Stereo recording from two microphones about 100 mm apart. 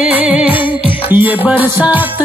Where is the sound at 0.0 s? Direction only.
15° right (ahead or behind).